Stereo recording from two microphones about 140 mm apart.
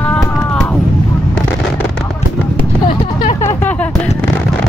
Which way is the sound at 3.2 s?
60° left (ahead or behind).